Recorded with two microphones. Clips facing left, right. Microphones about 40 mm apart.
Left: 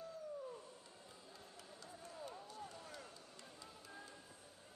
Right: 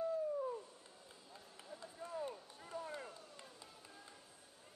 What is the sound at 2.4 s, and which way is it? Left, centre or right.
Run, right.